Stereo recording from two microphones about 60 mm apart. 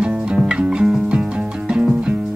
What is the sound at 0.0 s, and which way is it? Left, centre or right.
Music, centre.